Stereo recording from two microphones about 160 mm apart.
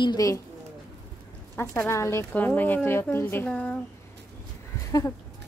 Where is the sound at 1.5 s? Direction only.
15° left (ahead or behind).